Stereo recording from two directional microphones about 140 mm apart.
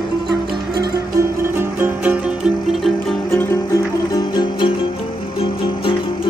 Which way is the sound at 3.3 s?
20° left (ahead or behind).